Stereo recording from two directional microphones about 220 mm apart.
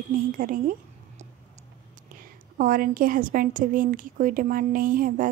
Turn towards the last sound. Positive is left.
turn(degrees=-40)  # may be behind; listen again after turning